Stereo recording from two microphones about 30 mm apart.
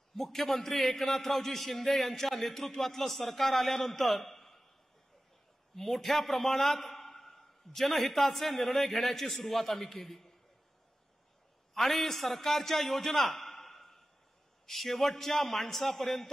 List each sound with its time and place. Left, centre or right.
0.1 s a man's voice: centre
3.7 s a man's voice: centre
4.0 s a man's voice: centre
5.8 s a man's voice: centre
11.7 s a man's voice: centre